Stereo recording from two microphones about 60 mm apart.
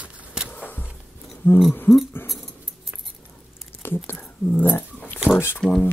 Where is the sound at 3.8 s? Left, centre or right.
Left.